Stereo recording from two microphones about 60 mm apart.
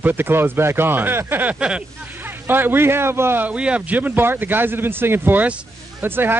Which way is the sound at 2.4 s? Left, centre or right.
Right.